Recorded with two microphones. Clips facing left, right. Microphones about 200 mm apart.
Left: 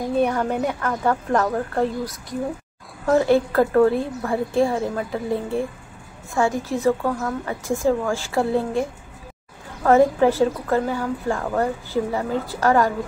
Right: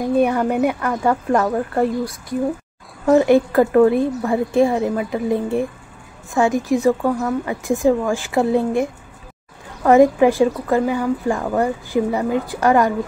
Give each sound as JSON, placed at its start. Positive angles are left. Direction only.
{"t": 0.2, "sound": "a woman's voice", "side_deg": -10}
{"t": 9.8, "sound": "a woman's voice", "side_deg": -15}